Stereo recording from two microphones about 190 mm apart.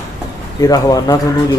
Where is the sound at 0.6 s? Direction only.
20° left (ahead or behind).